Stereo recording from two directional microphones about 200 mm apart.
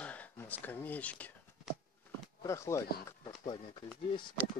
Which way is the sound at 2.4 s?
15° left (ahead or behind).